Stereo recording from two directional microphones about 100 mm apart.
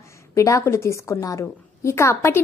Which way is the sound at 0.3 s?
30° left (ahead or behind).